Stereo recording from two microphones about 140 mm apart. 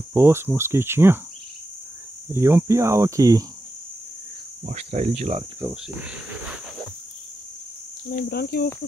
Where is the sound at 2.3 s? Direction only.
20° right (ahead or behind).